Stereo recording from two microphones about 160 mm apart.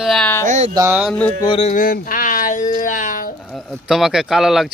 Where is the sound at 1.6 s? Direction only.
55° left (ahead or behind).